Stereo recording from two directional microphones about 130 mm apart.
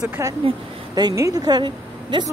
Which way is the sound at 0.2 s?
25° right (ahead or behind).